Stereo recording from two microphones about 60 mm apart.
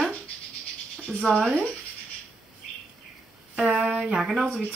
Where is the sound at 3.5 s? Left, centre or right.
Centre.